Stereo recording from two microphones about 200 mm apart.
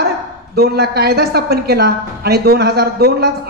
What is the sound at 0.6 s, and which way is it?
A woman's voice, 50° right (ahead or behind).